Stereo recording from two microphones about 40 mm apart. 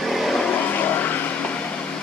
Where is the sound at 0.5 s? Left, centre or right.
Left.